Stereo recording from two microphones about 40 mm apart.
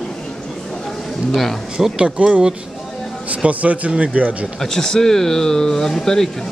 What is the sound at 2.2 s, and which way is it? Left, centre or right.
Speech, right.